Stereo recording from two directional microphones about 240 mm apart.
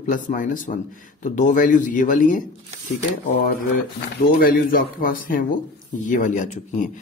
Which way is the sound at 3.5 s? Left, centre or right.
Left.